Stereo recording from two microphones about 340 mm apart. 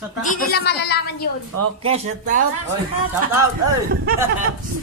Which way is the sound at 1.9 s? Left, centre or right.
Right.